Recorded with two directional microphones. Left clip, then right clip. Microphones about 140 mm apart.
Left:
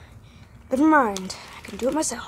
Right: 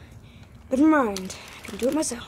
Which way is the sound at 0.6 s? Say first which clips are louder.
Left 2 dB; 20° left (ahead or behind).